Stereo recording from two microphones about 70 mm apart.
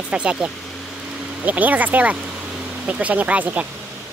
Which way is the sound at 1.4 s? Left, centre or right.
Right.